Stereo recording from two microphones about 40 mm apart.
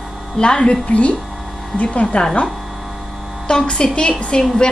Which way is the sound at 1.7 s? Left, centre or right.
Left.